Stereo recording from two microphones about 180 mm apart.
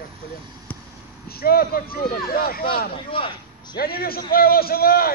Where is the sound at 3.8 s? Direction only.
55° left (ahead or behind).